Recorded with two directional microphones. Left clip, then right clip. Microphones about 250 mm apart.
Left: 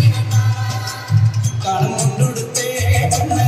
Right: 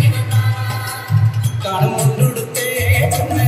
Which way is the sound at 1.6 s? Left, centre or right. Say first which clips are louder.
Right 1 dB; right.